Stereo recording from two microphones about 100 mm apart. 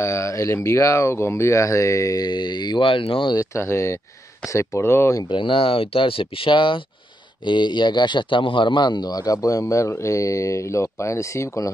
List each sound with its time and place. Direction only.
0.0 s a man's voice: 30° left (ahead or behind); by 3.3 s 60° left (ahead or behind)
3.3 s speech: 25° left (ahead or behind)
5.3 s a man's voice: 60° left (ahead or behind); by 11.7 s 30° left (ahead or behind)